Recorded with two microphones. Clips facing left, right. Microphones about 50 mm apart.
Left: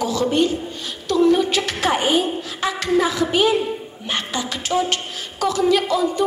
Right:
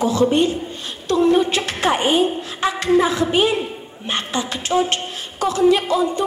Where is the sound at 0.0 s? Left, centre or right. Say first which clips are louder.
Right 2 dB; right.